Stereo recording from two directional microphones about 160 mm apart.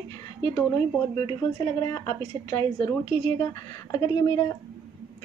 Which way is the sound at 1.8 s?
25° left (ahead or behind).